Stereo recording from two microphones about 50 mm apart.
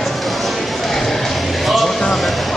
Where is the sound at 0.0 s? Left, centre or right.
Centre.